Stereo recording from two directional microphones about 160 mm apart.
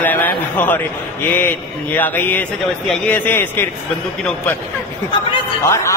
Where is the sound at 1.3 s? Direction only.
10° left (ahead or behind).